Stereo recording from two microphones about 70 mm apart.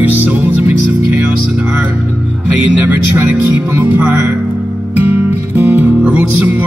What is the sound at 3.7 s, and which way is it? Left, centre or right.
Music, right.